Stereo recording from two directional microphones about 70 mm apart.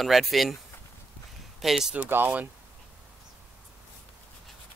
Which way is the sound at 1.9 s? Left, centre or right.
Right.